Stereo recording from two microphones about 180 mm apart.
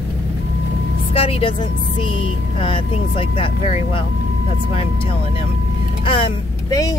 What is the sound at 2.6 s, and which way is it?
Speech, 30° left (ahead or behind).